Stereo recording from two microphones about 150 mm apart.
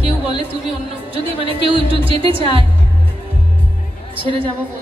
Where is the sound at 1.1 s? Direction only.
40° right (ahead or behind).